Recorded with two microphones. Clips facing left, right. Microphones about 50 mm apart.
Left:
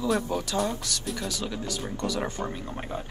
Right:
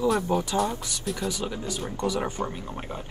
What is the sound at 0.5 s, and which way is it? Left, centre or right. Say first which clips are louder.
Speech: right 1 dB; right.